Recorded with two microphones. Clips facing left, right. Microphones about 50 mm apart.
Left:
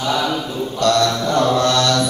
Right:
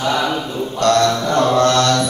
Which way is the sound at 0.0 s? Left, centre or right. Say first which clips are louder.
Right 1 dB; right.